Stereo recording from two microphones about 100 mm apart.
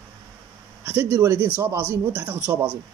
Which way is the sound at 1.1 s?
30° right (ahead or behind).